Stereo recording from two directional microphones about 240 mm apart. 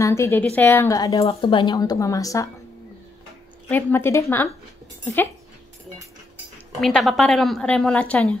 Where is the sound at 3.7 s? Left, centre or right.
Centre.